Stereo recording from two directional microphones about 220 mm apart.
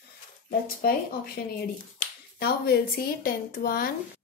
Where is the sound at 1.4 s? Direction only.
35° left (ahead or behind).